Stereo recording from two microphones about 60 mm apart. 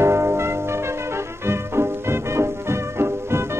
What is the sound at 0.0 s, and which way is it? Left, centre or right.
Music, right.